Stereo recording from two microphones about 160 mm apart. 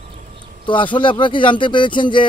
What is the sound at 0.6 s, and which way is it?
Speech, 30° left (ahead or behind).